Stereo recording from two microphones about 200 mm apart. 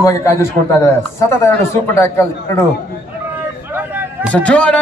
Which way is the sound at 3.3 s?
10° right (ahead or behind).